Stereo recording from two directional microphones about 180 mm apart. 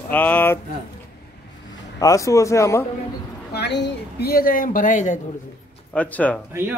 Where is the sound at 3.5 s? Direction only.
70° left (ahead or behind); by 5.2 s 45° left (ahead or behind).